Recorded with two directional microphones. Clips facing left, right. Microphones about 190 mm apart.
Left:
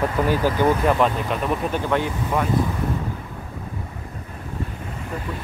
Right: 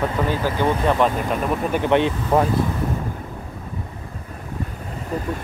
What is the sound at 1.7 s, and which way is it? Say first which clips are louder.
Speech: right 4 dB; 20° right (ahead or behind).